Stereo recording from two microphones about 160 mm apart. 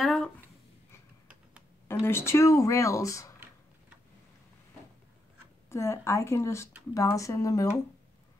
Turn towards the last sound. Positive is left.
turn(degrees=20)  # may be behind; listen again after turning